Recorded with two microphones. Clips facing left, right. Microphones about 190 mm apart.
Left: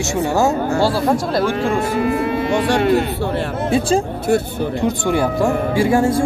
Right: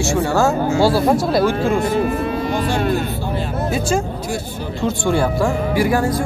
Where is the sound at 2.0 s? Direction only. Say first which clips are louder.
Left 2 dB; 75° left (ahead or behind).